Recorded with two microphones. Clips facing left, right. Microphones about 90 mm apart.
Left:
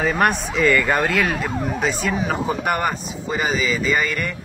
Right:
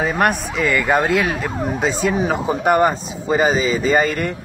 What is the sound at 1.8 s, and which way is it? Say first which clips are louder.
Speech: right 5 dB; 20° right (ahead or behind).